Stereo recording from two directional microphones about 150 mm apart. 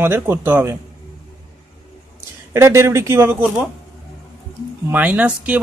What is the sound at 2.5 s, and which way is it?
Speech, 20° right (ahead or behind).